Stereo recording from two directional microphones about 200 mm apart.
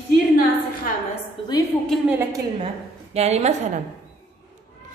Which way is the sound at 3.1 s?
35° right (ahead or behind).